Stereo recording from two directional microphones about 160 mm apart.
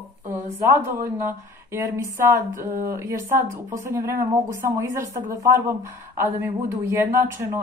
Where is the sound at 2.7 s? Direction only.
65° right (ahead or behind).